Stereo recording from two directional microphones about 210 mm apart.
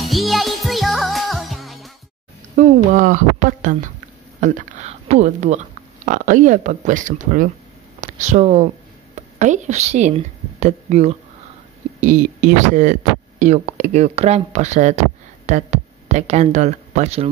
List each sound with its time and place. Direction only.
0.0 s music: centre (ahead or behind)
2.5 s a sound: 40° right (ahead or behind)
4.4 s a woman's voice: 35° right (ahead or behind)